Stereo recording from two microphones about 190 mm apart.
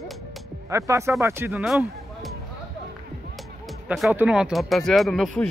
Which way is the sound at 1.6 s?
Centre (ahead or behind).